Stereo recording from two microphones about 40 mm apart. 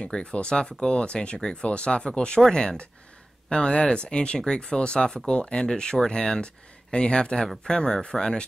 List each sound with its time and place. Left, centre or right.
0.0 s speech: left
3.4 s speech: left